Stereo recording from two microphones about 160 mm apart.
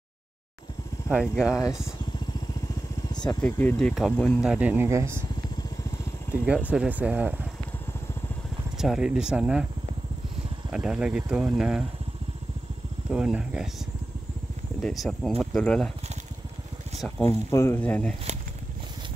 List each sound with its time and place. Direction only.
1.0 s speech: 5° right (ahead or behind)
3.1 s vehicle: 25° left (ahead or behind)
3.3 s speech: 10° left (ahead or behind)
4.4 s speech: 5° right (ahead or behind)
6.3 s speech: 5° right (ahead or behind)
8.7 s speech: centre (ahead or behind)
10.7 s speech: 5° right (ahead or behind)
13.1 s speech: 5° right (ahead or behind)
14.8 s speech: 5° left (ahead or behind)
17.5 s speech: 15° left (ahead or behind)